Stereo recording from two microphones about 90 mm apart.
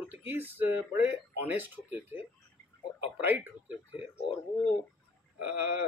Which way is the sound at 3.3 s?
20° right (ahead or behind).